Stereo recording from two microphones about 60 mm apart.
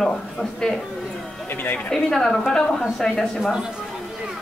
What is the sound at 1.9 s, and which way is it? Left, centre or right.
A woman's voice, centre.